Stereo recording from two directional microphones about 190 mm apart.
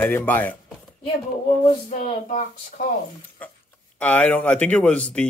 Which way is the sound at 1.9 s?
45° left (ahead or behind).